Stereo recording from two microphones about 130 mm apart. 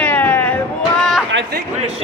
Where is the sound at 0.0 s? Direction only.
15° left (ahead or behind).